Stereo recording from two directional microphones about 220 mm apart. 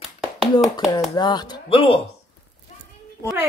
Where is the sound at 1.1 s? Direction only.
20° left (ahead or behind).